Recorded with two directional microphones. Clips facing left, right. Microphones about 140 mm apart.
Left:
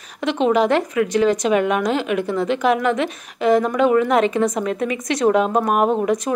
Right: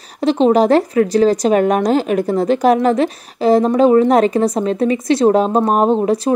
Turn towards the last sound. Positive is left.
turn(degrees=-30)  # may be behind; listen again after turning